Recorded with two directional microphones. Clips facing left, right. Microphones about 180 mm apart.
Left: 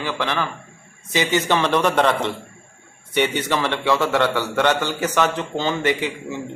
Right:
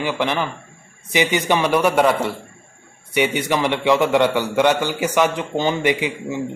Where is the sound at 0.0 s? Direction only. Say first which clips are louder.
Right 3 dB; 15° right (ahead or behind).